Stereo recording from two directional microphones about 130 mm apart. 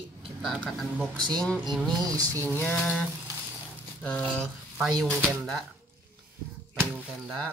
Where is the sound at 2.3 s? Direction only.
15° left (ahead or behind).